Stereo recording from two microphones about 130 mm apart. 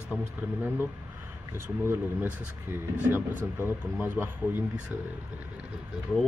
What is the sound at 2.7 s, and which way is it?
Speech, 15° right (ahead or behind).